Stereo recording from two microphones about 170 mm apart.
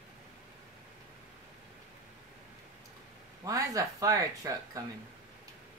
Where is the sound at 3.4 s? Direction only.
20° right (ahead or behind).